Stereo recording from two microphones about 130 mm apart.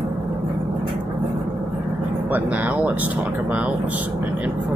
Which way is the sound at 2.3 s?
10° right (ahead or behind).